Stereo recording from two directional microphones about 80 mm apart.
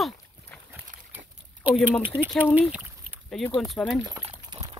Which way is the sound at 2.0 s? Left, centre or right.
Right.